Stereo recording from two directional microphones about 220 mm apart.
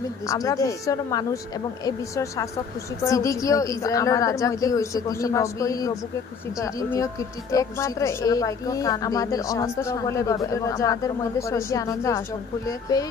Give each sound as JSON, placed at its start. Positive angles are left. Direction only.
{"t": 0.3, "sound": "speech", "side_deg": 15}